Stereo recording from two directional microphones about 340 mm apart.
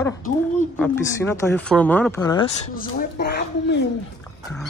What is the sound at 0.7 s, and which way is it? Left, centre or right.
Speech, centre.